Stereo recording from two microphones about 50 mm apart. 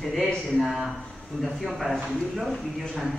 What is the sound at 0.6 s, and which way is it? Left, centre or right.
Speech, centre.